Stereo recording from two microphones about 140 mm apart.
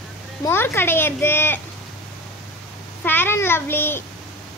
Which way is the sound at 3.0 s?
15° left (ahead or behind).